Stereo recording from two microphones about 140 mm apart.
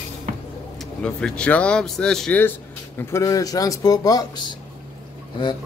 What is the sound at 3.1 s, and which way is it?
A man's voice, 20° left (ahead or behind).